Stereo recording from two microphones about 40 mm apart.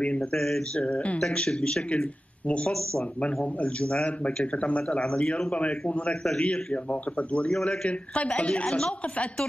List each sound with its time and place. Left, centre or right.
0.0 s speech: left
0.4 s speech: centre
0.7 s a woman's voice: left
1.2 s a woman's voice: left
5.0 s speech: centre
5.6 s a woman's voice: left